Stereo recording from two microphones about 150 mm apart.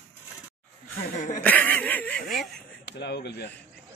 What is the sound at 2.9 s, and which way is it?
Speech, 90° left.